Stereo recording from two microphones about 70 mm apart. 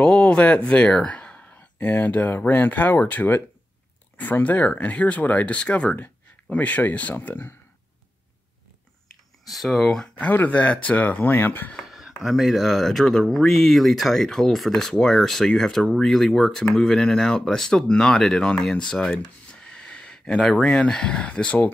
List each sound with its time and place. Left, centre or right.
0.0 s speech: centre; by 7.5 s left
9.5 s speech: centre
10.1 s speech: left
11.8 s speech: centre; by 21.7 s left